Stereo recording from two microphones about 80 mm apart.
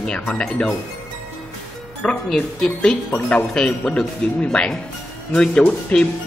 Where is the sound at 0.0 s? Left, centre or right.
Centre.